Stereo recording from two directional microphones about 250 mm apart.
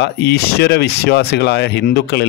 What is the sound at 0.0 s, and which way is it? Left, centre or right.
Speech, left.